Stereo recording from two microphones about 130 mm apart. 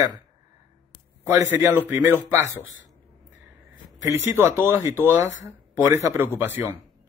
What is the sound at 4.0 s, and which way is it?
Speech, 20° right (ahead or behind).